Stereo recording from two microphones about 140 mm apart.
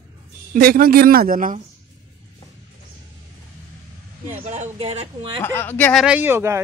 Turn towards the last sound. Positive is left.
turn(degrees=-20)  # may be behind; listen again after turning